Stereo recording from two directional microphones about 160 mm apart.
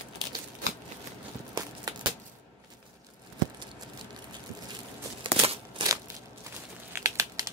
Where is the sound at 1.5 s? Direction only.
25° right (ahead or behind).